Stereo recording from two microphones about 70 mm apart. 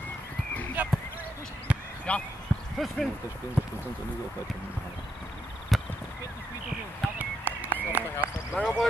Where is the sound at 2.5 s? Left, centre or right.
Centre.